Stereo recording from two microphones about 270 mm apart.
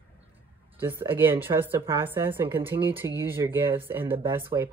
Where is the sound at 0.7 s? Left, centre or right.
Centre.